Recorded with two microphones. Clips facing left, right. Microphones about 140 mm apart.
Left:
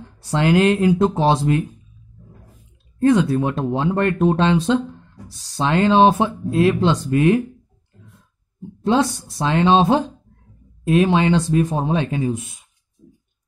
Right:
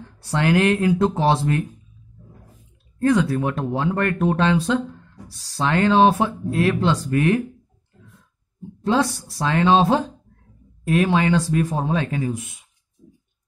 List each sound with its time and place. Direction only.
0.2 s speech: 20° left (ahead or behind)
3.0 s speech: 25° left (ahead or behind)
8.8 s speech: 20° left (ahead or behind)